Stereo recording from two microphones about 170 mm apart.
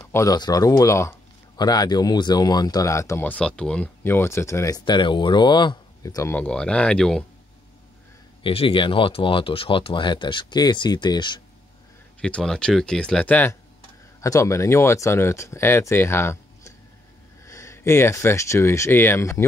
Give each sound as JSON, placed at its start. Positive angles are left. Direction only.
{"t": 0.1, "sound": "speech", "side_deg": 20}
{"t": 8.4, "sound": "speech", "side_deg": 30}
{"t": 12.2, "sound": "speech", "side_deg": 5}